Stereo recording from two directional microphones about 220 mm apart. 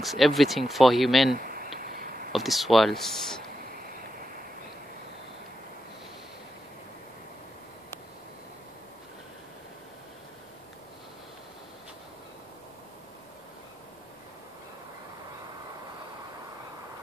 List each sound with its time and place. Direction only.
0.0 s speech: centre (ahead or behind)
1.4 s a sound: 40° right (ahead or behind)
2.3 s speech: centre (ahead or behind)